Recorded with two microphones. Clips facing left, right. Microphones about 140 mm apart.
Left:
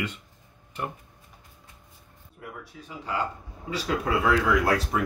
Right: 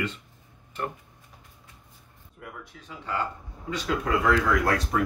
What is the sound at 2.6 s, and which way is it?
Speech, 15° left (ahead or behind).